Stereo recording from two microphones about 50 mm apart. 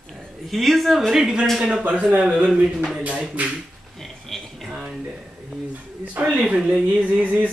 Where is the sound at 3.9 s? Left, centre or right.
Centre.